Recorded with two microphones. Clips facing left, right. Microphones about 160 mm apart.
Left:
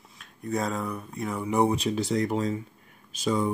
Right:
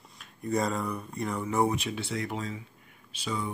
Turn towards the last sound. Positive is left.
turn(degrees=45)  # may be behind; listen again after turning